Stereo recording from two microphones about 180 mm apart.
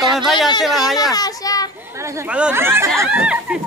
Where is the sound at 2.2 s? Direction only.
5° right (ahead or behind).